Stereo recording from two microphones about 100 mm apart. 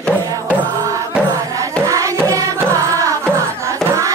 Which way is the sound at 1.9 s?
35° right (ahead or behind).